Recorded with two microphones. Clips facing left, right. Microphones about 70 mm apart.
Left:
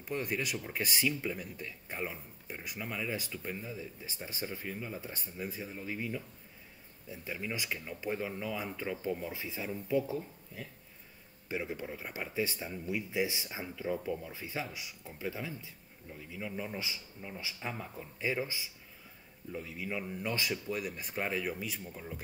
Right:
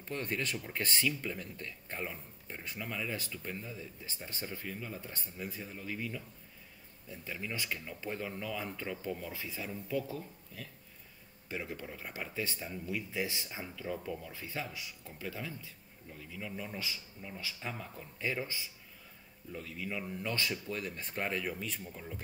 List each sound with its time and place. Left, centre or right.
0.0 s speech: centre